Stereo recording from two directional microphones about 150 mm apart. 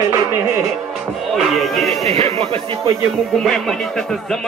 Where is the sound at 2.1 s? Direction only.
40° right (ahead or behind).